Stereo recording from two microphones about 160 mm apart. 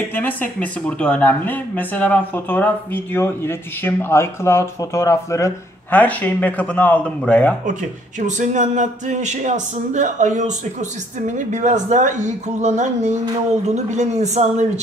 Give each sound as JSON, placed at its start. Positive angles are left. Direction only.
{"t": 0.1, "sound": "speech", "side_deg": 10}
{"t": 8.2, "sound": "speech", "side_deg": -50}